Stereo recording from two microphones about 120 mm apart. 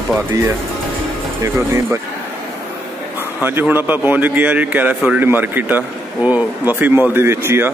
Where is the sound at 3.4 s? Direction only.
15° right (ahead or behind).